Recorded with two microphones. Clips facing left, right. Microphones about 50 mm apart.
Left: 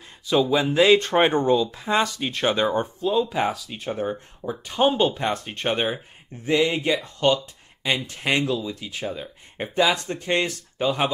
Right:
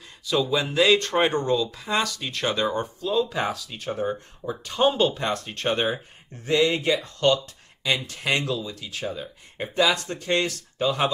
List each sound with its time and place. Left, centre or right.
0.3 s speech: left
3.2 s speech: centre
6.6 s speech: centre
7.9 s speech: left